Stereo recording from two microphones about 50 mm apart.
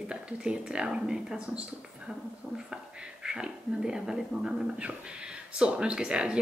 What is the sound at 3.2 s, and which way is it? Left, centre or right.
A woman's voice, centre.